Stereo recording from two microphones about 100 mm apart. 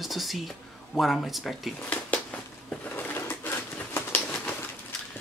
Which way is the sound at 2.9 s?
20° left (ahead or behind).